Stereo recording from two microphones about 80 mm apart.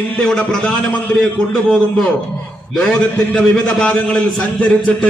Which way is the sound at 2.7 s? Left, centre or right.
Centre.